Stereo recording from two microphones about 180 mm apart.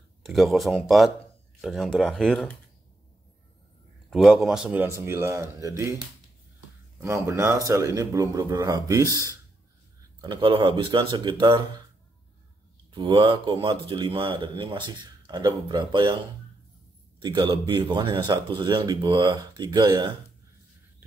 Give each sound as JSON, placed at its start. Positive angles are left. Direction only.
{"t": 0.2, "sound": "speech", "side_deg": 0}
{"t": 4.1, "sound": "speech", "side_deg": 0}
{"t": 7.0, "sound": "speech", "side_deg": -15}
{"t": 12.9, "sound": "speech", "side_deg": -25}
{"t": 17.2, "sound": "speech", "side_deg": -25}